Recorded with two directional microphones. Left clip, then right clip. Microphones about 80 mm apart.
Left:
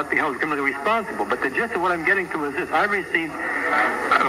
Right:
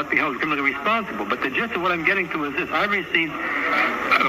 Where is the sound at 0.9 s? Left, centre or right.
Left.